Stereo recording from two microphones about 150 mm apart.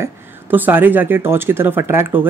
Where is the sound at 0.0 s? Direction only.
15° right (ahead or behind).